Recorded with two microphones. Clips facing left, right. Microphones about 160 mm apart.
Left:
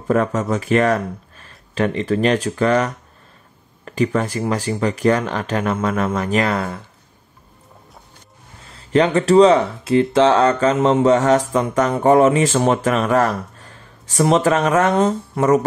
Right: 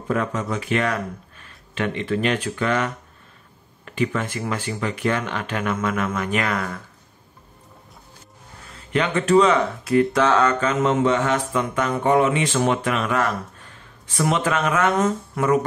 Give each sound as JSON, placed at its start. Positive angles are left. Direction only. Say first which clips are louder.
{"t": 0.1, "sound": "mantra", "louder": "left 6 dB", "side_deg": 45}
{"t": 8.7, "sound": "mantra", "louder": "left 7 dB", "side_deg": 35}